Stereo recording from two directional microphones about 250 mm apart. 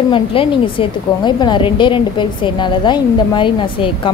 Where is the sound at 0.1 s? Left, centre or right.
Left.